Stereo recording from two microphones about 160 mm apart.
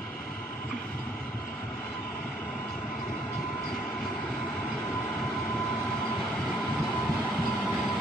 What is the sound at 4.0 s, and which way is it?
Vehicle, 10° left (ahead or behind).